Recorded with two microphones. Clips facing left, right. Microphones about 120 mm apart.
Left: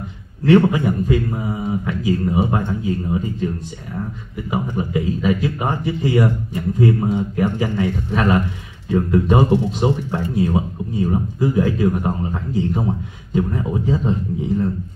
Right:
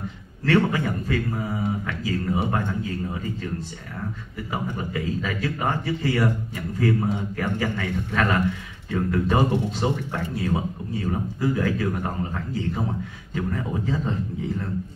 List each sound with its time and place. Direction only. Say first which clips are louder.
0.5 s speech: left 7 dB; 20° left (ahead or behind)
4.5 s speech: left 7 dB; 15° left (ahead or behind)